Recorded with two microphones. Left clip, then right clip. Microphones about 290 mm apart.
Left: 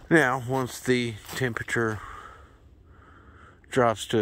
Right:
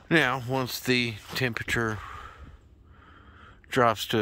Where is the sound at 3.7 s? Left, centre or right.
Centre.